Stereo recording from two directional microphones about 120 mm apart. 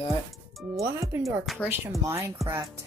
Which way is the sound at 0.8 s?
20° right (ahead or behind).